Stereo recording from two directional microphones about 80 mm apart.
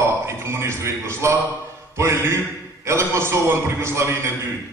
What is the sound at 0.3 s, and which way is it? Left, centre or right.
A man's voice, right.